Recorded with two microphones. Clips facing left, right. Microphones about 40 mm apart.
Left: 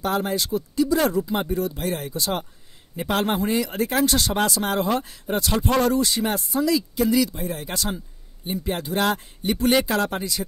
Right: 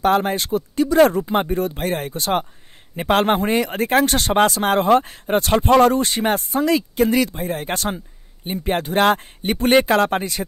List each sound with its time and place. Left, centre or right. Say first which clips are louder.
0.0 s speech: right 6 dB; right